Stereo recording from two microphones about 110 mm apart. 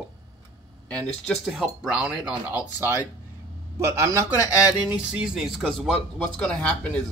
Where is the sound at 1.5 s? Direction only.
5° right (ahead or behind).